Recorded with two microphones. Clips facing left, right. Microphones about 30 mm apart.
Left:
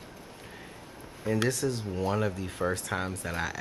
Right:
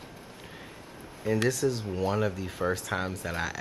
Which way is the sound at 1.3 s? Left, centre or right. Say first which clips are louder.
Right 1 dB; centre.